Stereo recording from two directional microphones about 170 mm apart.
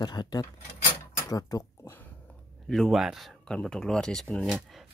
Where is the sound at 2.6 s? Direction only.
Centre (ahead or behind).